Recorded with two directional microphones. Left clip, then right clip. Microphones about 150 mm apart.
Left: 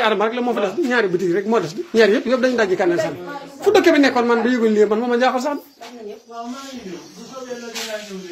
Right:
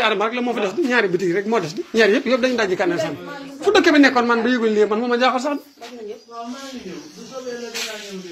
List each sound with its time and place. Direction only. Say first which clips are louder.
0.0 s speech: left 1 dB; 20° left (ahead or behind)